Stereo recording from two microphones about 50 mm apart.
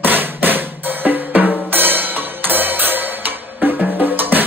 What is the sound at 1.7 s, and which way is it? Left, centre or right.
Music, right.